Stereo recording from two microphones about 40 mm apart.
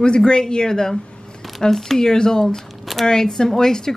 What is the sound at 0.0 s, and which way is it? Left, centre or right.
Speech, left.